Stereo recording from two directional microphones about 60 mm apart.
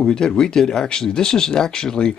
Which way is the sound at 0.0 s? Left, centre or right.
Centre.